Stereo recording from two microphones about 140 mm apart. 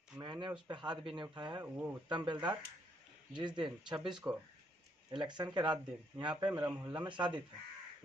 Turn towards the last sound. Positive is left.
turn(degrees=-35)  # may be behind; listen again after turning